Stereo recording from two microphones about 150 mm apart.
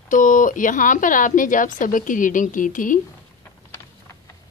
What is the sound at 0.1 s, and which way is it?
A woman's voice, 60° left (ahead or behind).